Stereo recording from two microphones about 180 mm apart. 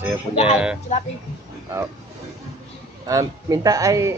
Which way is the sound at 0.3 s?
35° left (ahead or behind).